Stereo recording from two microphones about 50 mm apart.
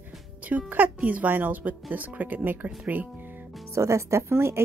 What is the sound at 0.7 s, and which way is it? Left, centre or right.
Speech, right.